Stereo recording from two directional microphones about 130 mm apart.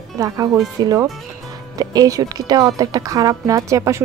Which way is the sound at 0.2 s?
25° right (ahead or behind).